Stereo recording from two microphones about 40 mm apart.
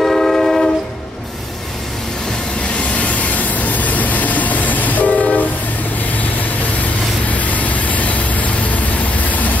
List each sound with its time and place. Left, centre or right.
0.0 s train: centre
3.0 s vehicle: left
7.3 s vehicle: left